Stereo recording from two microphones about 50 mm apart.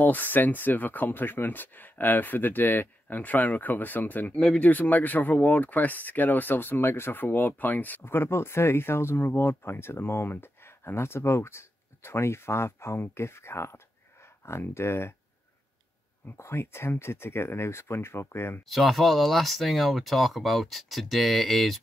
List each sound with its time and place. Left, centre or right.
0.0 s speech: left
8.0 s speech: left
16.3 s speech: left
18.7 s speech: centre